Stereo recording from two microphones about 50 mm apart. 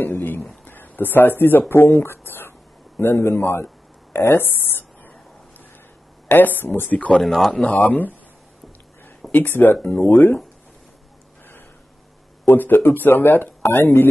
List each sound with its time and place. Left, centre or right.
0.0 s a sound: left
0.7 s speech: left
6.2 s speech: left
7.2 s speech: centre
7.6 s speech: left
7.9 s speech: left
9.3 s speech: left
12.4 s speech: left